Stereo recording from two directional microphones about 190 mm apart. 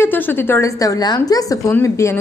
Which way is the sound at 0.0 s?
10° left (ahead or behind).